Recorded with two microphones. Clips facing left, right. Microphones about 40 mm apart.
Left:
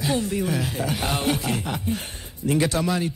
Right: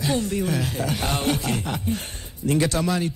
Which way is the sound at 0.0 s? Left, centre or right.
Centre.